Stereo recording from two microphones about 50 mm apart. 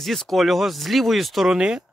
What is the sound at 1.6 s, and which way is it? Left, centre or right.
Speech, centre.